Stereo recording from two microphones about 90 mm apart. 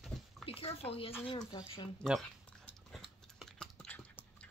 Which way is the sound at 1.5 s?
55° left (ahead or behind).